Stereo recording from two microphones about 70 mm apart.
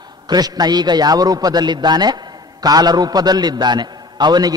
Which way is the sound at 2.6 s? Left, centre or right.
Right.